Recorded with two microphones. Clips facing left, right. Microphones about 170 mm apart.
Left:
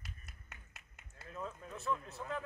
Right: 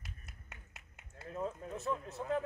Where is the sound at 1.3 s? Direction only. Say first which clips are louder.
Right 5 dB; 35° right (ahead or behind).